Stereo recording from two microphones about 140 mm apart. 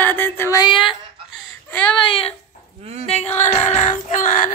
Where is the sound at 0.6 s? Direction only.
35° left (ahead or behind).